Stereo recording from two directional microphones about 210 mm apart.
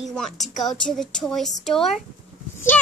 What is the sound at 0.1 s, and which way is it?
A child's voice, centre (ahead or behind).